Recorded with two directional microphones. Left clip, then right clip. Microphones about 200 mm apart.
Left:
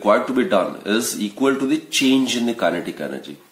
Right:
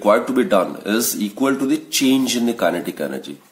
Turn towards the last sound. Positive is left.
turn(degrees=-40)  # may be behind; listen again after turning